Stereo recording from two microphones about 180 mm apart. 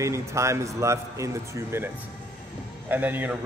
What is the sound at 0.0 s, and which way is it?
A man's voice, 15° right (ahead or behind).